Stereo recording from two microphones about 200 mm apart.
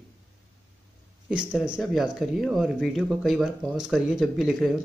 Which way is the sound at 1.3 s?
5° right (ahead or behind).